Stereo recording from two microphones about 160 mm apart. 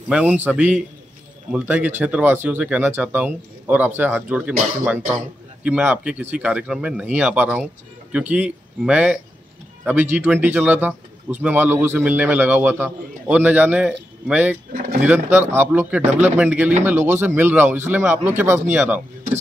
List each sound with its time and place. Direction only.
0.1 s speech: 10° right (ahead or behind)
14.7 s speech: 65° right (ahead or behind)
15.3 s speech: 15° right (ahead or behind)